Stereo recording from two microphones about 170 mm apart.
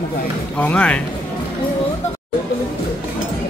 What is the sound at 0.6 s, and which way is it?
Speech, 5° left (ahead or behind).